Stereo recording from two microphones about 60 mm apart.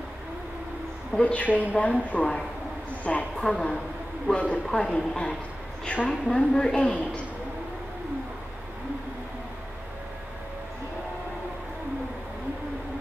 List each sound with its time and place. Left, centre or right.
1.2 s a woman's voice: left
4.6 s a woman's voice: centre